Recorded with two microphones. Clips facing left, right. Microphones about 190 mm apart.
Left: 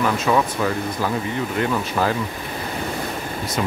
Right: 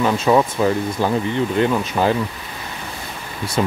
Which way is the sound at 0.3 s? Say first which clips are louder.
Right 4 dB; 25° right (ahead or behind).